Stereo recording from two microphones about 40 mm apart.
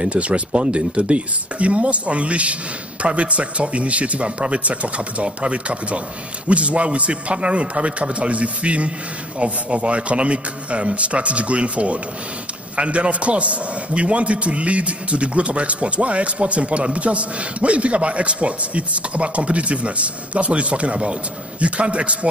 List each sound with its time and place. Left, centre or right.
0.0 s a man's voice: right